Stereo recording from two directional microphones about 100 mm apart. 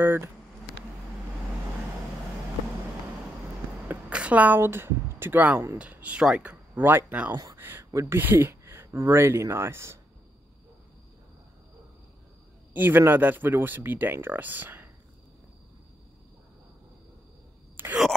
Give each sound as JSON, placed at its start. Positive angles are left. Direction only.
{"t": 0.0, "sound": "a sound", "side_deg": -20}
{"t": 3.9, "sound": "speech", "side_deg": -15}
{"t": 7.3, "sound": "speech", "side_deg": -35}
{"t": 12.7, "sound": "speech", "side_deg": -20}